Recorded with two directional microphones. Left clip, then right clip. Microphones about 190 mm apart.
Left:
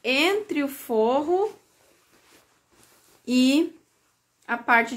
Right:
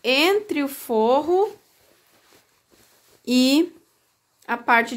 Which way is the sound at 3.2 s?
50° right (ahead or behind).